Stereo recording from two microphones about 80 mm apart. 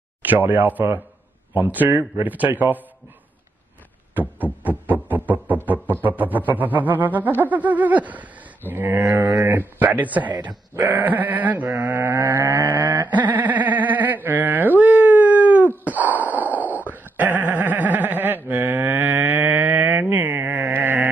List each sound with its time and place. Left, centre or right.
0.2 s music: right
4.1 s music: right
13.1 s a sound: right